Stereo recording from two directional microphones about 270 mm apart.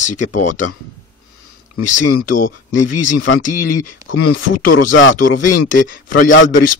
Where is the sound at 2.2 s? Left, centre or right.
Left.